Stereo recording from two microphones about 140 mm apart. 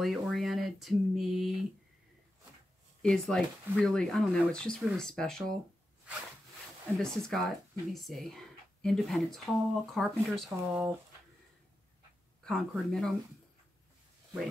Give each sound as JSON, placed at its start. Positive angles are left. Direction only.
{"t": 0.0, "sound": "a sound", "side_deg": 0}
{"t": 3.0, "sound": "speech", "side_deg": 5}
{"t": 7.0, "sound": "speech", "side_deg": 5}
{"t": 12.4, "sound": "speech", "side_deg": 0}